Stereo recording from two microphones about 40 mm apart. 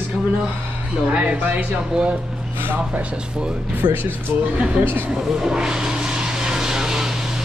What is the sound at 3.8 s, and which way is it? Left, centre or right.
Speech, right.